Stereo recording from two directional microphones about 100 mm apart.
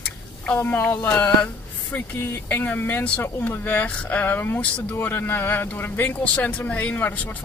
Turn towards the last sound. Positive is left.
turn(degrees=15)  # may be behind; listen again after turning